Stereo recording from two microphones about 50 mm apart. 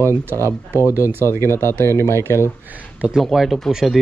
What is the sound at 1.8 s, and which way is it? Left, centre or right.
Speech, left.